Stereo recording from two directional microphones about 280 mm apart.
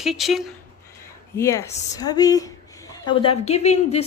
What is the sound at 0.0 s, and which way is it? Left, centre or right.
Speech, centre.